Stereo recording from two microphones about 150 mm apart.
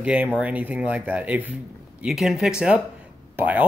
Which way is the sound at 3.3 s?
10° right (ahead or behind).